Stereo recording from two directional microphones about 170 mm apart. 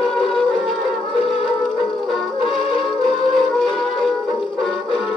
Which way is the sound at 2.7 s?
Centre (ahead or behind).